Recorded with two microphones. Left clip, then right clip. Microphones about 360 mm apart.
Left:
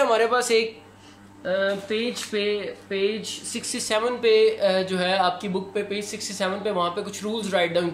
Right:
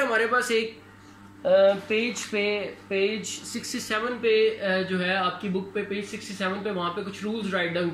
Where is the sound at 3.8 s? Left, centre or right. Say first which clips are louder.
Left 4 dB; centre.